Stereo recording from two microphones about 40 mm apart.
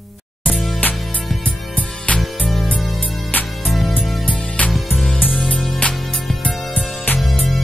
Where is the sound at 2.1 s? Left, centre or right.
Left.